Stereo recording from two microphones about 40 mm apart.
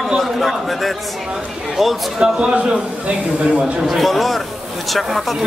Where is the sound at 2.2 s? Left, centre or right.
Right.